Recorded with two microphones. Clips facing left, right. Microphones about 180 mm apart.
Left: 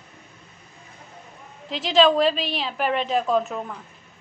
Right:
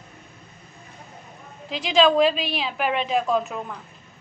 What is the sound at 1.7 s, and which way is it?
A woman's voice, centre (ahead or behind).